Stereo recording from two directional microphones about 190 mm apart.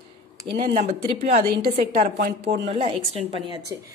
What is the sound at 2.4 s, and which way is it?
A woman's voice, 30° right (ahead or behind).